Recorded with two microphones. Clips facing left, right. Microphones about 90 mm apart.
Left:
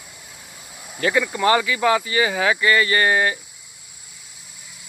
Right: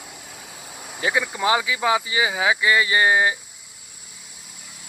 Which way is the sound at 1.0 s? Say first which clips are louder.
Left 3 dB; 15° right (ahead or behind).